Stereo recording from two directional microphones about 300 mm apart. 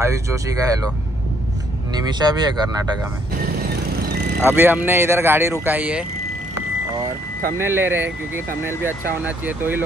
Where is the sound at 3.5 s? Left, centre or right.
Right.